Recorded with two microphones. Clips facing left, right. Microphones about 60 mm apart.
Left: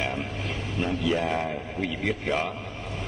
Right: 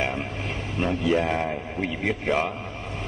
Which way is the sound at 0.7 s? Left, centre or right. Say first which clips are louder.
Right 3 dB; right.